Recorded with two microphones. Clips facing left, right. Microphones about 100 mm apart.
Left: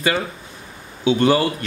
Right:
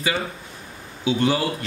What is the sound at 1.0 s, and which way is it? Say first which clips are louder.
Speech: left 5 dB; 80° left.